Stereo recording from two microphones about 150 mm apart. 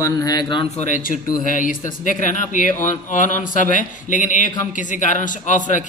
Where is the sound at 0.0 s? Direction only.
25° left (ahead or behind).